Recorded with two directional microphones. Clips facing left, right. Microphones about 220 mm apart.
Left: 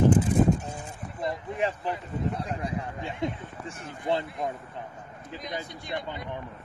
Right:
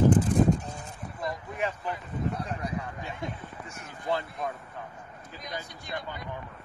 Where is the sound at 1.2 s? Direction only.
25° left (ahead or behind).